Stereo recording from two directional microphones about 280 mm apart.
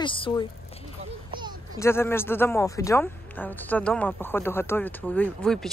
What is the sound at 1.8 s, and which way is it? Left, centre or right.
Speech, centre.